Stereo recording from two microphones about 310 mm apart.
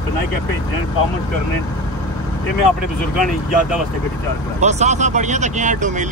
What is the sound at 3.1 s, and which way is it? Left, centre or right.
Speech, centre.